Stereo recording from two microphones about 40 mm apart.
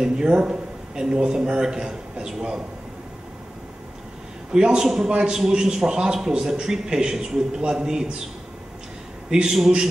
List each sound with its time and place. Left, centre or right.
0.0 s a man's voice: centre
4.5 s a man's voice: right
4.8 s a man's voice: centre
9.3 s a man's voice: centre